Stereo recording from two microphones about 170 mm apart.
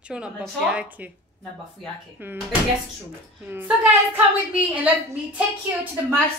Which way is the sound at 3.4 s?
10° right (ahead or behind).